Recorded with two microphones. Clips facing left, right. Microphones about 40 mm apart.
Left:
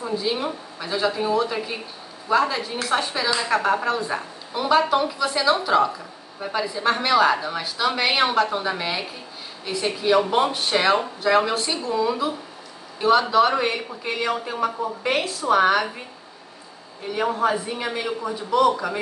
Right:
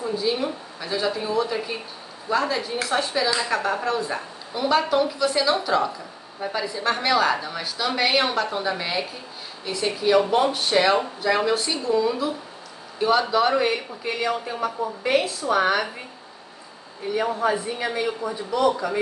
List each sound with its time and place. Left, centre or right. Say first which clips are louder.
0.0 s a man's voice: right 1 dB; centre
3.5 s a man's voice: left 3 dB; centre
10.1 s speech: even; centre
10.5 s a man's voice: even; centre
17.1 s a man's voice: left 1 dB; centre